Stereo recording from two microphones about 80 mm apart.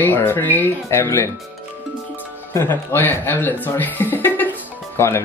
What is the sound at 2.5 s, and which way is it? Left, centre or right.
Speech, left.